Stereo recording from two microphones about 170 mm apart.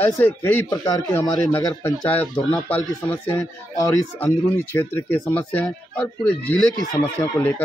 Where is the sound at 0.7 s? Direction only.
20° left (ahead or behind).